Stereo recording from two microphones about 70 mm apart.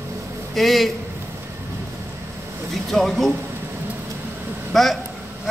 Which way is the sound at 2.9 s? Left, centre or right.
Centre.